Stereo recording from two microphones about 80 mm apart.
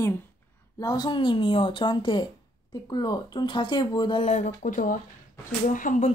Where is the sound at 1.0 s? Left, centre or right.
Left.